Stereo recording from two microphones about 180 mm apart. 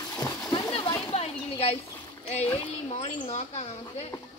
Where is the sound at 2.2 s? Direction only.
35° left (ahead or behind).